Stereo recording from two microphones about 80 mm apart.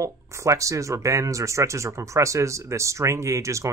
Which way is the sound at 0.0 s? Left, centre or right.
Right.